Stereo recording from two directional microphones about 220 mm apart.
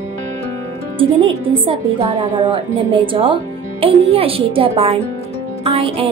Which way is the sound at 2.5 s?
25° right (ahead or behind).